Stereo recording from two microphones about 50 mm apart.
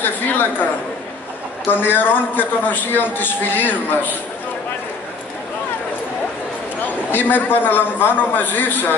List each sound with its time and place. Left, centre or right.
0.0 s a woman's voice: left
1.7 s a man's voice: left
7.1 s a man's voice: left